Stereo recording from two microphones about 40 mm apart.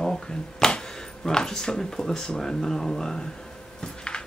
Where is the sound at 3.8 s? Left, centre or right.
Centre.